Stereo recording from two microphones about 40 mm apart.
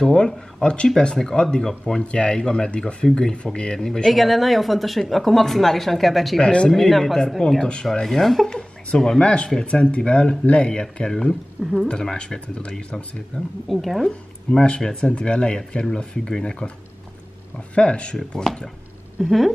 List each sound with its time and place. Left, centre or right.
0.6 s speech: left
2.0 s speech: left
3.7 s speech: centre
4.1 s speech: centre
6.4 s speech: left
6.7 s a woman's voice: centre
9.2 s speech: left; by 11.9 s centre
11.9 s speech: left
13.7 s speech: centre
14.0 s speech: centre
17.7 s speech: left
18.3 s speech: centre
19.2 s speech: centre